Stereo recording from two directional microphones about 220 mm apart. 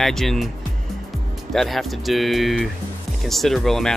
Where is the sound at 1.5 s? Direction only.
Centre (ahead or behind).